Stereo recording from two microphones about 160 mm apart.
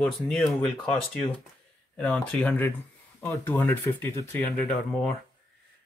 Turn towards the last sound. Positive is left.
turn(degrees=5)  # may be behind; listen again after turning